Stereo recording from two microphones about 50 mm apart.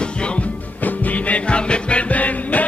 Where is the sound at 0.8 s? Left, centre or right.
Left.